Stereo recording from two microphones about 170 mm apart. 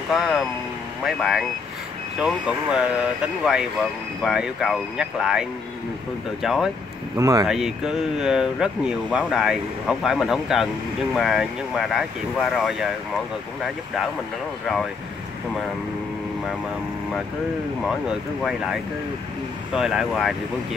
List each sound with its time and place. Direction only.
0.1 s speech: centre (ahead or behind)
4.2 s speech: centre (ahead or behind)
7.2 s speech: 20° right (ahead or behind)
7.4 s speech: 5° right (ahead or behind)
17.8 s speech: centre (ahead or behind)